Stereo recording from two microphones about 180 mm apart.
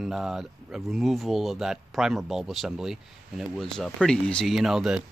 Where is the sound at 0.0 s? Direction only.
5° right (ahead or behind).